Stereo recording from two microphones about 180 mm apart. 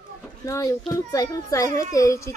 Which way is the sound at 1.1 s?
20° left (ahead or behind).